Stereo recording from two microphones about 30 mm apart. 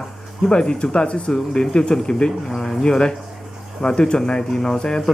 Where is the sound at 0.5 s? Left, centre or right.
Left.